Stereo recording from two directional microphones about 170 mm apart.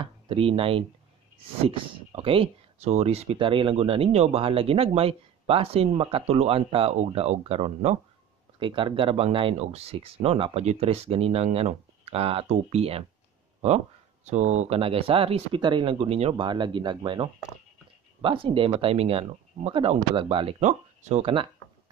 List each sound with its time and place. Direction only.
0.0 s speech: 30° right (ahead or behind)
2.1 s speech: 30° right (ahead or behind)
8.5 s speech: 30° right (ahead or behind)